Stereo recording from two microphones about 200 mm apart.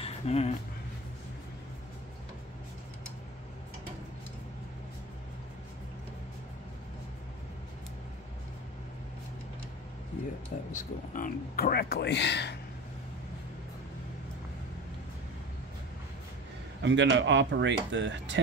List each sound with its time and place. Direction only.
0.0 s speech: 30° left (ahead or behind)
10.7 s speech: 40° left (ahead or behind); by 12.5 s 60° left (ahead or behind)
16.8 s speech: 65° right (ahead or behind)